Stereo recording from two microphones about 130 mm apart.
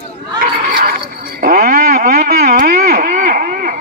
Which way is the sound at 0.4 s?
90° right.